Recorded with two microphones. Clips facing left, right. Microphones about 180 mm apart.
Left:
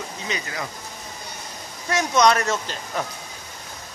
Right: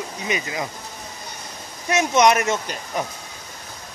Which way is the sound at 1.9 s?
20° right (ahead or behind).